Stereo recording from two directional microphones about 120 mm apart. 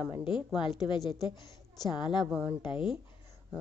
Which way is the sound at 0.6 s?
40° left (ahead or behind).